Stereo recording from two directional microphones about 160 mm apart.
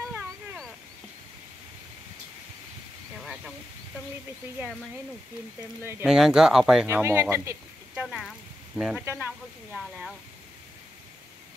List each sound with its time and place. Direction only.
5.6 s speech: 15° right (ahead or behind)
6.0 s speech: 5° right (ahead or behind)
7.0 s speech: 15° right (ahead or behind)
7.9 s speech: 5° right (ahead or behind)